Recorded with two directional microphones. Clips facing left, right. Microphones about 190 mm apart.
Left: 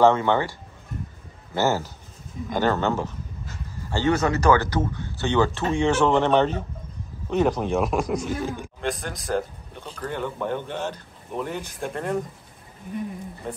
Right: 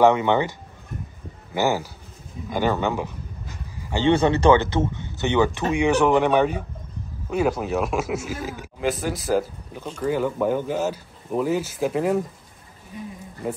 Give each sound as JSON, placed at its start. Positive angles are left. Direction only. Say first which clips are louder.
{"t": 0.0, "sound": "speech", "louder": "right 1 dB", "side_deg": -15}
{"t": 2.5, "sound": "a sound", "louder": "even", "side_deg": -15}
{"t": 4.1, "sound": "a man's voice", "louder": "right 3 dB", "side_deg": -30}